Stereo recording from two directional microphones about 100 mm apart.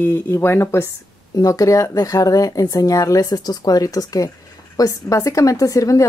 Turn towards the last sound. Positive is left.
turn(degrees=35)  # may be behind; listen again after turning